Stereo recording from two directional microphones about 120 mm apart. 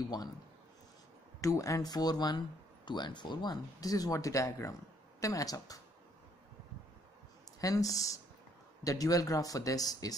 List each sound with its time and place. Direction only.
1.4 s speech: 25° left (ahead or behind)
7.6 s speech: 30° left (ahead or behind)